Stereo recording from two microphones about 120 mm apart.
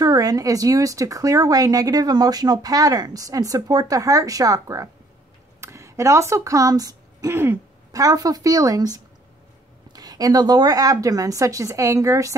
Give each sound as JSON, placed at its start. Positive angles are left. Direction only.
{"t": 0.0, "sound": "speech", "side_deg": -30}